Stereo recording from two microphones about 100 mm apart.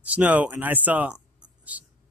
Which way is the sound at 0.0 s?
15° right (ahead or behind).